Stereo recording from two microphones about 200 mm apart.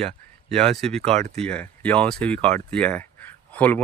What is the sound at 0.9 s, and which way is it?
Speech, 30° right (ahead or behind).